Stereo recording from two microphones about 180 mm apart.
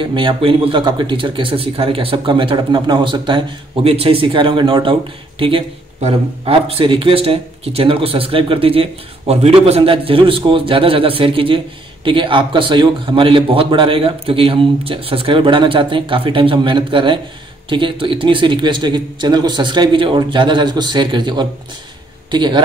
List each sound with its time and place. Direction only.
0.0 s a man's voice: 25° right (ahead or behind)